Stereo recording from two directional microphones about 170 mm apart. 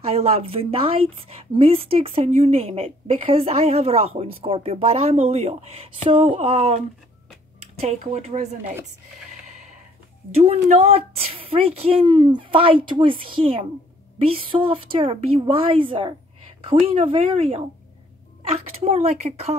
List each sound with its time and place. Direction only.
0.0 s a woman's voice: 35° right (ahead or behind)
7.8 s a woman's voice: 40° right (ahead or behind)
10.3 s a woman's voice: 35° right (ahead or behind)